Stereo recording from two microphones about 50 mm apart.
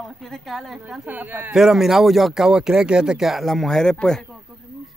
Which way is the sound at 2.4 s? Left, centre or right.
Centre.